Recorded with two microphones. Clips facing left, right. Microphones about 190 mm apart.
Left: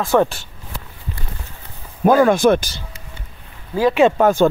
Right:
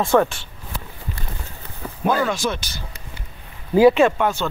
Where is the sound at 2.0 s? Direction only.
50° left (ahead or behind).